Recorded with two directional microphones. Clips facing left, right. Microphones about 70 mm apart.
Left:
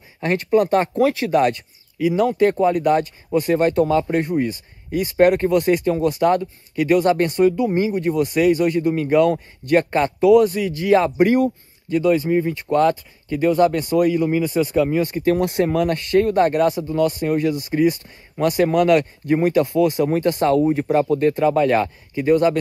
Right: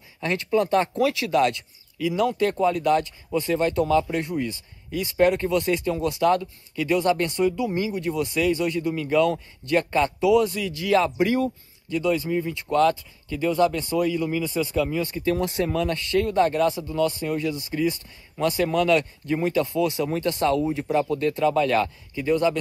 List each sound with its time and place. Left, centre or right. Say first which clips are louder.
0.2 s speech: left 5 dB; left